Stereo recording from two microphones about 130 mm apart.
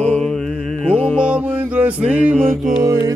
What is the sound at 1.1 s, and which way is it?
Music, 10° right (ahead or behind).